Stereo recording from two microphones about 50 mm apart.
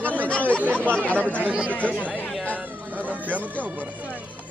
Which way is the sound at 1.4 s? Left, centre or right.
Right.